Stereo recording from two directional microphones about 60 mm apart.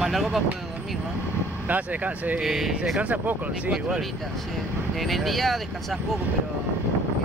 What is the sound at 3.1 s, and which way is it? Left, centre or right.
Speech, right.